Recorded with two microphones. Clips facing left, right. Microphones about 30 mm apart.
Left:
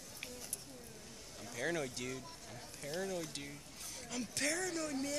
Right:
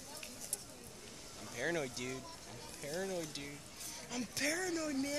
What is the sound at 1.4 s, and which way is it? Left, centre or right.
Speech, centre.